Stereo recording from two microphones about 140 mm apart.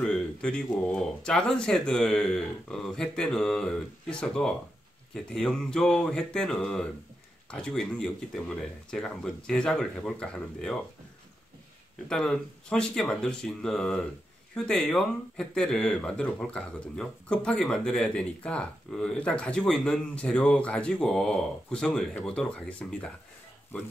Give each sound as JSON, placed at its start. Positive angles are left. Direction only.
{"t": 0.0, "sound": "speech", "side_deg": 5}
{"t": 12.1, "sound": "speech", "side_deg": 5}